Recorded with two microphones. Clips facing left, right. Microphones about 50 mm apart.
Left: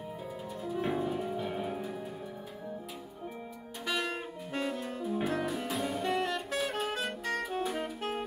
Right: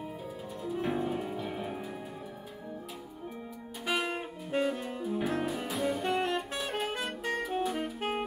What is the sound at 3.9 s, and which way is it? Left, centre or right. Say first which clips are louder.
Music: right 2 dB; centre.